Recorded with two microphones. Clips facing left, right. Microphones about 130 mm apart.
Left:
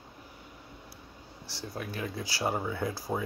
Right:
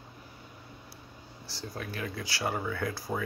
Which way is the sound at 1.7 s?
10° left (ahead or behind).